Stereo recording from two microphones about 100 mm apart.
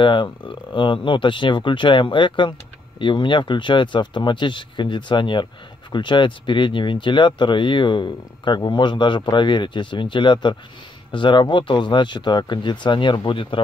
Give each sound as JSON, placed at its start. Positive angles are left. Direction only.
{"t": 0.0, "sound": "speech", "side_deg": 55}